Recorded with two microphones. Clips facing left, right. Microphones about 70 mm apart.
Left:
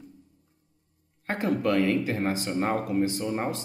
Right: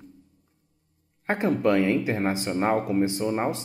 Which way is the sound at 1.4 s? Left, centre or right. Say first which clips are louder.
Right 2 dB; centre.